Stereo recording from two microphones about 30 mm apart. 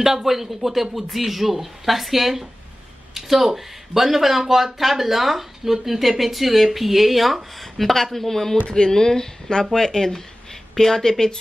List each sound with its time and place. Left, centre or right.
0.0 s speech: centre
8.6 s a woman's voice: left